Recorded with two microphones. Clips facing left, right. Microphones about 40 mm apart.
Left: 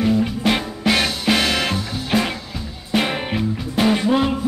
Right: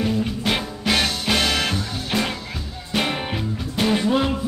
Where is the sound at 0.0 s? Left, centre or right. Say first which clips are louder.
Left 4 dB; centre.